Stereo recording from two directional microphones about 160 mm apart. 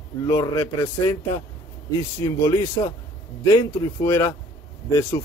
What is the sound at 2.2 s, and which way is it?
Speech, 20° left (ahead or behind).